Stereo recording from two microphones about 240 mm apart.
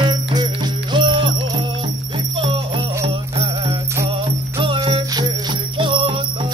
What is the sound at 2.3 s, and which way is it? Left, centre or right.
Music, right.